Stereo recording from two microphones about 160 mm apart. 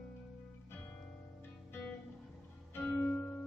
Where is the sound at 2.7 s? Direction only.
10° left (ahead or behind).